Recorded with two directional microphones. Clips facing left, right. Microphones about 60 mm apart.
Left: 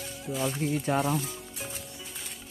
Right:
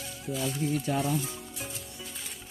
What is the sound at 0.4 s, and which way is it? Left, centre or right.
Speech, left.